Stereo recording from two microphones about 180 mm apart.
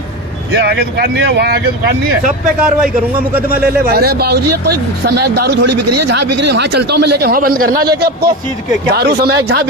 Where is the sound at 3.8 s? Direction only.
60° right (ahead or behind).